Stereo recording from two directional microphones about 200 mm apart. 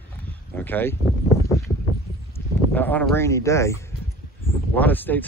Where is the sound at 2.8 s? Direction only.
10° left (ahead or behind).